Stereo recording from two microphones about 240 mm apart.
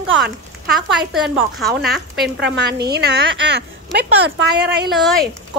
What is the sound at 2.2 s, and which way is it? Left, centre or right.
A woman's voice, right.